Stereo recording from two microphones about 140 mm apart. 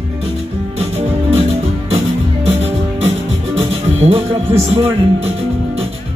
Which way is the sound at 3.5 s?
45° right (ahead or behind).